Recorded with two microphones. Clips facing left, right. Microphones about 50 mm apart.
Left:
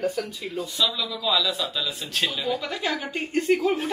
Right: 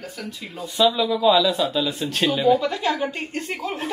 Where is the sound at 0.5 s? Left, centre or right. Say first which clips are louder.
Right 7 dB; centre.